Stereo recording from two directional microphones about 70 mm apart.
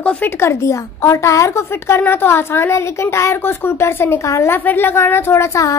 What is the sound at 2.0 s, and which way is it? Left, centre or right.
A woman's voice, left.